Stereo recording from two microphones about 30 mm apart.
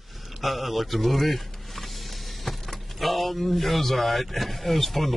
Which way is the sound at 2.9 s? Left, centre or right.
Centre.